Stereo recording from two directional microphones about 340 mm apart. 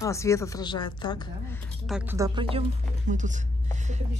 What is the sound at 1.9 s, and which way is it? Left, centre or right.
Speech, centre.